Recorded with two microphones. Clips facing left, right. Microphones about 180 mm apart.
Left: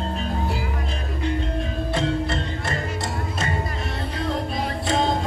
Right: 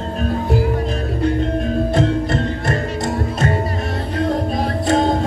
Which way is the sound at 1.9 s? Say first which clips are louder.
Right 3 dB; 45° right (ahead or behind).